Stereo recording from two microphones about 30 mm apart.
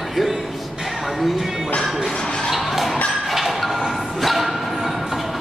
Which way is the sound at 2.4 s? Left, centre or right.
Centre.